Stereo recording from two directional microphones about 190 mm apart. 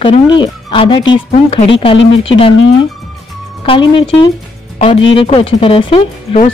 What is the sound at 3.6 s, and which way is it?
Speech, 25° left (ahead or behind).